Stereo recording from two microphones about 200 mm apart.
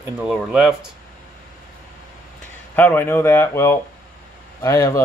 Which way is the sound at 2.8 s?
10° left (ahead or behind).